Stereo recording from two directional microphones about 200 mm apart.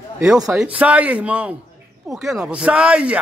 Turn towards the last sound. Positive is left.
turn(degrees=-5)  # may be behind; listen again after turning